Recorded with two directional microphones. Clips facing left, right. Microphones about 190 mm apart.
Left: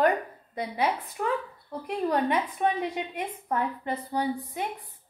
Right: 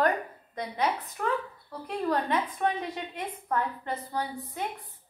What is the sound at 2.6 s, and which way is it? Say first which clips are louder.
A woman's voice: left 3 dB; 15° left (ahead or behind).